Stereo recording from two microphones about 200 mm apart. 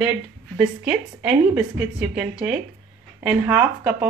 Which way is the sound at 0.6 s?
5° right (ahead or behind).